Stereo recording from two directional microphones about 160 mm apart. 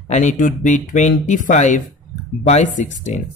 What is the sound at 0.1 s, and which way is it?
Speech, 50° left (ahead or behind).